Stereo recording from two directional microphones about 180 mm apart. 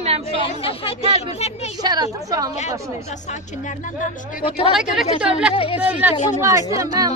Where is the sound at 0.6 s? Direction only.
30° left (ahead or behind).